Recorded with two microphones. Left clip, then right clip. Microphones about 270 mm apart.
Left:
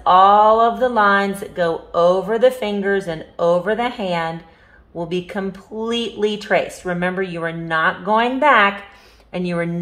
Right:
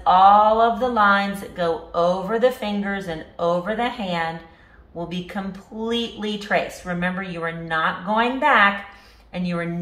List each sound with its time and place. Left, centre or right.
0.0 s speech: left